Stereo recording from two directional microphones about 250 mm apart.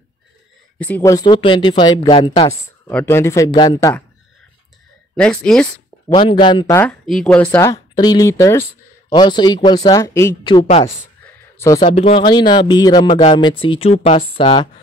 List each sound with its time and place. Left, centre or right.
0.7 s speech: centre
5.1 s speech: centre
6.1 s speech: left
11.5 s a sound: centre
11.8 s speech: left